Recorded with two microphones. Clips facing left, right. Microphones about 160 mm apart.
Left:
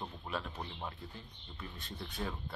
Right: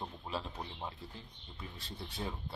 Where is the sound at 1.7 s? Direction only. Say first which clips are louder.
Left 1 dB; 30° right (ahead or behind).